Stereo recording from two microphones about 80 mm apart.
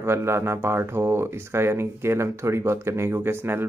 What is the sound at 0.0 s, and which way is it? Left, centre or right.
Speech, right.